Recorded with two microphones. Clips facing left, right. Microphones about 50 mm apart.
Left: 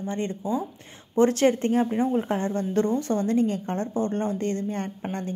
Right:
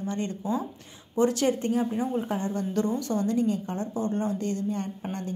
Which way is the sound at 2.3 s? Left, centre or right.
Left.